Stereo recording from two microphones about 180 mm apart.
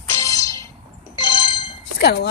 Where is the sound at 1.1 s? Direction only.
25° left (ahead or behind).